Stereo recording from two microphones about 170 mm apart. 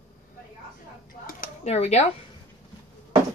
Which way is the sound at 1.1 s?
55° left (ahead or behind).